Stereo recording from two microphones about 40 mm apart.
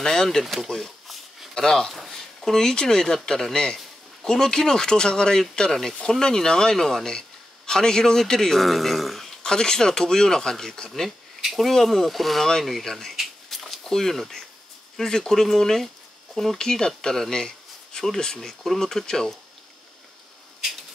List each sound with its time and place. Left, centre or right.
0.0 s a man's voice: centre
0.4 s speech: centre
2.0 s a sound: centre
2.7 s a man's voice: centre
9.4 s a man's voice: centre
11.4 s speech: centre
12.9 s a sound: centre
13.8 s a man's voice: centre